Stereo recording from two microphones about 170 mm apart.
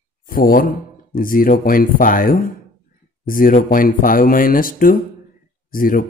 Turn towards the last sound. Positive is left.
turn(degrees=55)  # may be behind; listen again after turning